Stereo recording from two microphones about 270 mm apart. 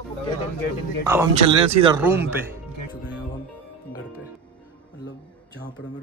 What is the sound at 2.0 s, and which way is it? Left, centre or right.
Speech, centre.